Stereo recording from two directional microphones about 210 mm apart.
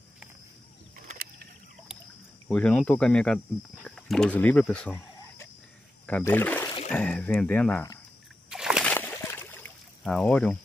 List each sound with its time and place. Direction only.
1.0 s rowboat: 45° right (ahead or behind)
2.4 s speech: 5° left (ahead or behind)
6.0 s speech: 10° left (ahead or behind)
8.5 s slosh: 5° right (ahead or behind)
8.9 s a sound: 10° left (ahead or behind)